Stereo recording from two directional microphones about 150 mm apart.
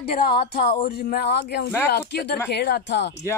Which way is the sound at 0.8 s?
80° left.